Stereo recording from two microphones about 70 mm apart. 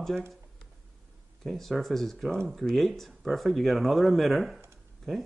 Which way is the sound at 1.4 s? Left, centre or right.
Centre.